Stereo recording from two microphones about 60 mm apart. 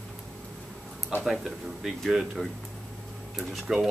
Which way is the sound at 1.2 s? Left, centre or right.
Centre.